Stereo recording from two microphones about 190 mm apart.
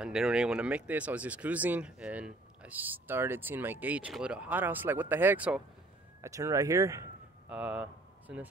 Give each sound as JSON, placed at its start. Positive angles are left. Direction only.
{"t": 0.0, "sound": "speech", "side_deg": -5}